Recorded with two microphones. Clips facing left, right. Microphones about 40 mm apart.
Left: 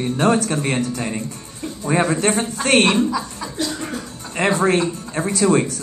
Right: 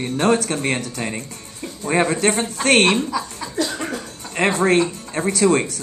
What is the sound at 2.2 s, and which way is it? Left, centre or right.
Speech, right.